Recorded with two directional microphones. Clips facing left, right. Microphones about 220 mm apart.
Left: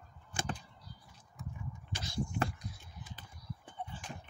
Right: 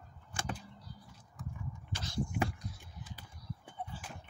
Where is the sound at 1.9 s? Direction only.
10° left (ahead or behind).